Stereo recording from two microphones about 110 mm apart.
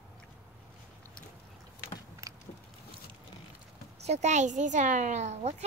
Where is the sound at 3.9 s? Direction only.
90° right.